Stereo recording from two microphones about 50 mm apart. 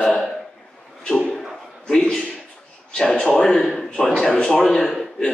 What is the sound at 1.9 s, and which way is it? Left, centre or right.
Speech, centre.